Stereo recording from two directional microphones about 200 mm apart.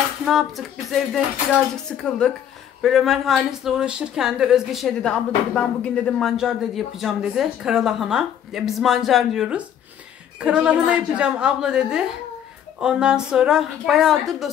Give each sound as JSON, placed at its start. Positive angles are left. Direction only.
{"t": 0.2, "sound": "speech", "side_deg": 0}
{"t": 1.9, "sound": "speech", "side_deg": 5}